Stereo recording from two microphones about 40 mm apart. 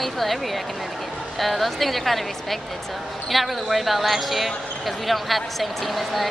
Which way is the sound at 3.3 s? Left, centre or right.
Centre.